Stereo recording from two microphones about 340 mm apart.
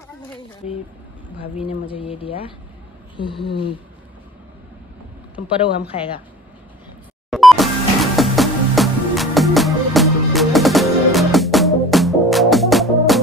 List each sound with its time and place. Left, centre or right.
1.4 s speech: centre
7.2 s music: centre